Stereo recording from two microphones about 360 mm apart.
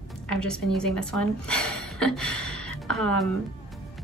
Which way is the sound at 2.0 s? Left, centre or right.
Centre.